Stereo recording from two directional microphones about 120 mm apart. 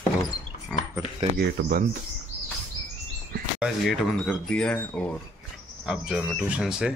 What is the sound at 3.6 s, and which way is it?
Speech, 5° right (ahead or behind).